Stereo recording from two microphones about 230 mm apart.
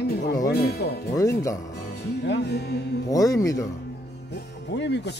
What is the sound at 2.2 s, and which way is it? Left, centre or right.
Speech, left.